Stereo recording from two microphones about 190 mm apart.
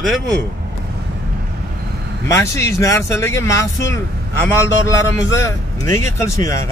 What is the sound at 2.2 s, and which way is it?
A man's voice, 15° left (ahead or behind).